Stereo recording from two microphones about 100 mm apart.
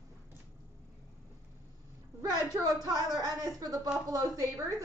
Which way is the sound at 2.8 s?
40° right (ahead or behind).